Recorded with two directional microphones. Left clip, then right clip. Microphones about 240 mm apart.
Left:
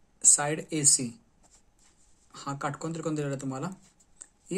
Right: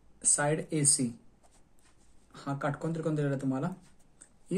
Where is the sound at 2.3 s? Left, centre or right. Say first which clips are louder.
Left 1 dB; left.